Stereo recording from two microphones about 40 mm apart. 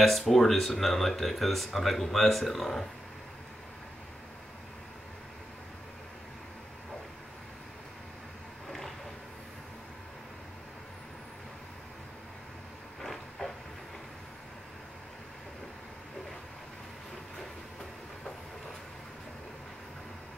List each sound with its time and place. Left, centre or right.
0.0 s speech: centre
8.6 s a sound: centre
13.0 s vehicle: centre